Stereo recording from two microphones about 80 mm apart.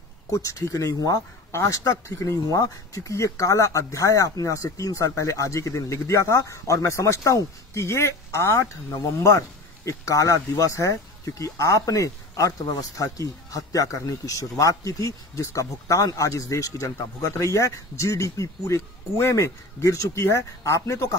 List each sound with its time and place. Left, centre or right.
0.3 s speech: left